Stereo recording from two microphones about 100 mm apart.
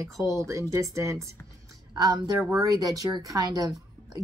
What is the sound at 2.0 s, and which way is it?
Speech, 45° right (ahead or behind).